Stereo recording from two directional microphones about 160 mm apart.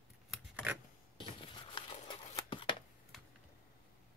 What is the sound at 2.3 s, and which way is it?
Scissors, 30° left (ahead or behind).